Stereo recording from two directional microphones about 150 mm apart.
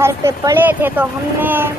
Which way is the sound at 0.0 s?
15° right (ahead or behind).